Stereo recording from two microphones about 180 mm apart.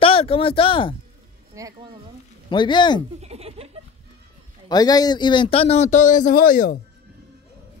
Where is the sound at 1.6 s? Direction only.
15° right (ahead or behind).